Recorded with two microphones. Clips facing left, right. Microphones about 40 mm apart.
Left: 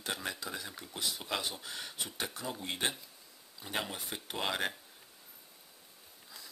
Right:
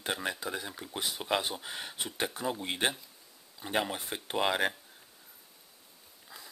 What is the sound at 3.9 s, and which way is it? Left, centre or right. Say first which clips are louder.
Speech: right 5 dB; right.